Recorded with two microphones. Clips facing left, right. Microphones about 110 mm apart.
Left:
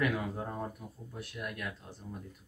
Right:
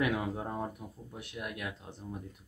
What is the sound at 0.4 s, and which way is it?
Speech, 15° right (ahead or behind).